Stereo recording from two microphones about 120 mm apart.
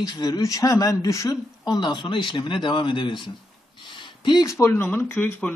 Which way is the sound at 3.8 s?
45° left (ahead or behind).